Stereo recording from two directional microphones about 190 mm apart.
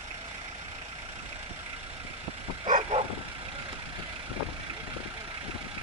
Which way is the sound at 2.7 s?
35° right (ahead or behind).